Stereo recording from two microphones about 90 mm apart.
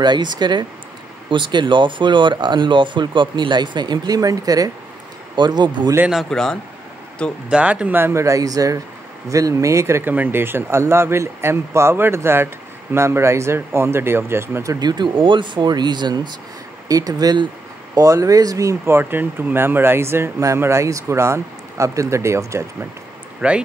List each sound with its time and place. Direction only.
0.0 s speech: 55° right (ahead or behind)
5.3 s speech: 55° right (ahead or behind)
6.3 s speech: 5° left (ahead or behind)
7.4 s speech: 10° right (ahead or behind)
8.0 s speech: 30° right (ahead or behind)
14.8 s speech: 50° right (ahead or behind)
15.2 s speech: 60° right (ahead or behind)
16.8 s speech: 40° right (ahead or behind)
18.9 s speech: 20° right (ahead or behind)
23.4 s speech: 10° right (ahead or behind)